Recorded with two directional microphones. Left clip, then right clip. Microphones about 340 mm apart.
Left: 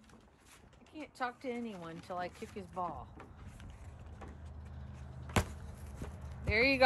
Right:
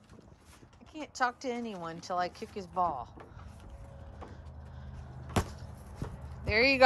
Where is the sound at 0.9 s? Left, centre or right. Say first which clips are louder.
Right 8 dB; centre.